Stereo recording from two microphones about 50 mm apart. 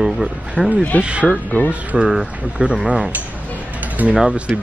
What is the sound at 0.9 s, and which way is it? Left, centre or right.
Speech, left.